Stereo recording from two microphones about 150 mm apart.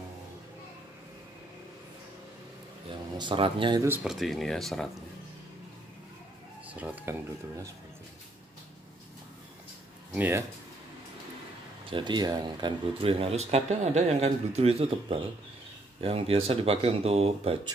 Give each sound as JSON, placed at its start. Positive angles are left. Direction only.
{"t": 2.9, "sound": "speech", "side_deg": -35}
{"t": 4.0, "sound": "speech", "side_deg": 0}
{"t": 6.7, "sound": "speech", "side_deg": -10}
{"t": 10.1, "sound": "speech", "side_deg": -10}
{"t": 11.8, "sound": "speech", "side_deg": -35}